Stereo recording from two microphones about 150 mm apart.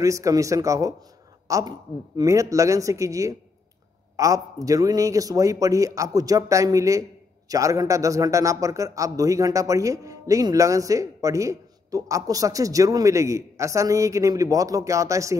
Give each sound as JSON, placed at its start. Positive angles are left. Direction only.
{"t": 0.0, "sound": "a man's voice", "side_deg": -20}